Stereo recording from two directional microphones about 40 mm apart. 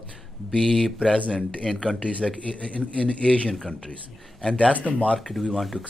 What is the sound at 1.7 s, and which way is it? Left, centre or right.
Speech, centre.